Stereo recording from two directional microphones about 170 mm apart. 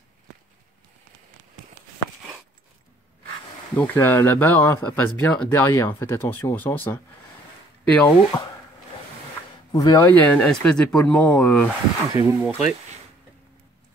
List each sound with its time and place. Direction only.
3.7 s speech: 10° left (ahead or behind)
9.7 s speech: 25° left (ahead or behind)
10.0 s speech: 10° left (ahead or behind)
12.1 s speech: 20° right (ahead or behind)
12.4 s speech: 10° right (ahead or behind)